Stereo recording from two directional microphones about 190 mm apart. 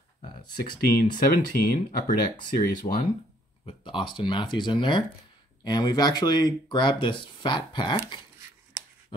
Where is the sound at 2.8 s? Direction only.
35° left (ahead or behind).